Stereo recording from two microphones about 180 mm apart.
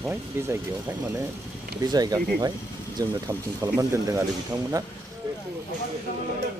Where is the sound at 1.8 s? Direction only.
20° right (ahead or behind).